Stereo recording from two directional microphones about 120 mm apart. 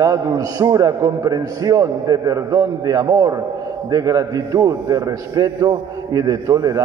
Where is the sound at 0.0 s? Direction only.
30° right (ahead or behind).